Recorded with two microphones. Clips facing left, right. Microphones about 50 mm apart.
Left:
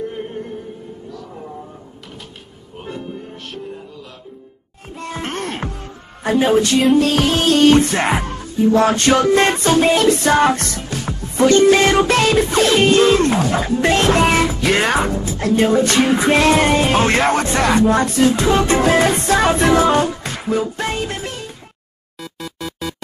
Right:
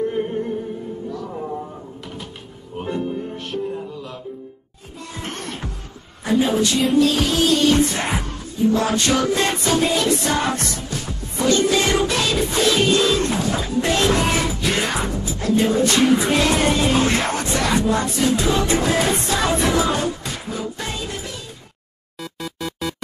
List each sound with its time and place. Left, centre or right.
0.1 s music: centre
2.8 s music: centre
5.0 s music: left
22.6 s music: centre